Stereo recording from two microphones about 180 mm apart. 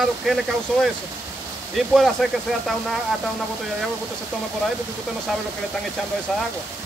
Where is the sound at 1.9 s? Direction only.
Centre (ahead or behind).